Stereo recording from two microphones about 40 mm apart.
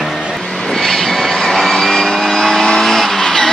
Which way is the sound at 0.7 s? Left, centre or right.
Centre.